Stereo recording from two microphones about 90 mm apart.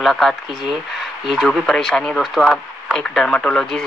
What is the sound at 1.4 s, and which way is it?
Speech, 5° left (ahead or behind).